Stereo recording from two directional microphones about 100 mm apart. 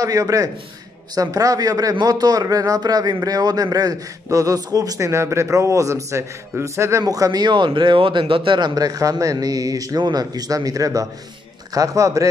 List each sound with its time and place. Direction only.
0.0 s a man's voice: 35° right (ahead or behind)